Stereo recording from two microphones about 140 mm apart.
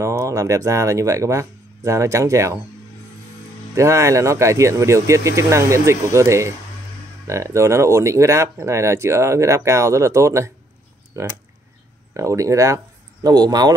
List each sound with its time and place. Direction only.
0.0 s speech: 20° right (ahead or behind)
3.7 s speech: 20° right (ahead or behind)
12.1 s speech: 20° right (ahead or behind)